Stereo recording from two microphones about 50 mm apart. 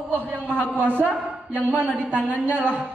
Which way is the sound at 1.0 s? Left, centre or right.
Right.